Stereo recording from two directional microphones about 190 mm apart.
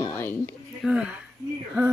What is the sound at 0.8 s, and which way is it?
Speech, 5° right (ahead or behind).